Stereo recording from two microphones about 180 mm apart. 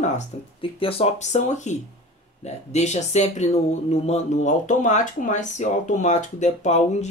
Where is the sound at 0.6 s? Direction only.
30° left (ahead or behind).